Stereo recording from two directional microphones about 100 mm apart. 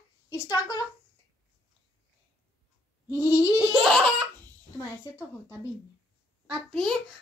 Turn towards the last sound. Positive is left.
turn(degrees=0)  # may be behind; listen again after turning